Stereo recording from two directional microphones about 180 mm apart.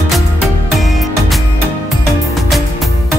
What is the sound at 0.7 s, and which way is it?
Music, centre (ahead or behind).